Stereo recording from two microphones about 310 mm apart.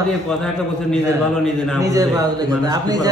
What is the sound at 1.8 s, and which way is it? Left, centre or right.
Speech, centre.